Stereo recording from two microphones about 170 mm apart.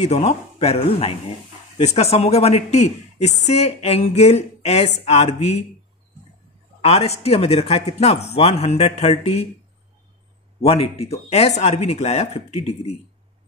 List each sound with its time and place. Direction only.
0.0 s a woman's voice: 40° left (ahead or behind)
6.8 s a woman's voice: 35° left (ahead or behind)
10.7 s a woman's voice: 35° left (ahead or behind)